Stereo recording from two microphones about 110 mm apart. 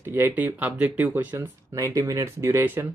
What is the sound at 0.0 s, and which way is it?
Speech, 20° right (ahead or behind).